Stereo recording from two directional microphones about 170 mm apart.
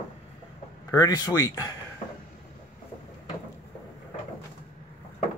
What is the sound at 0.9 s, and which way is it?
Speech, 20° left (ahead or behind).